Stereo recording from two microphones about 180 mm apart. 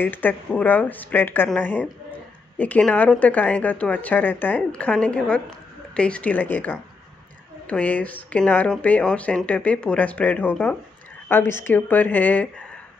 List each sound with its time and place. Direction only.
0.0 s speech: 10° left (ahead or behind)